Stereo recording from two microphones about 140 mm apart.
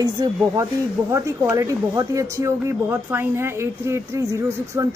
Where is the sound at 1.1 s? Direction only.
25° right (ahead or behind).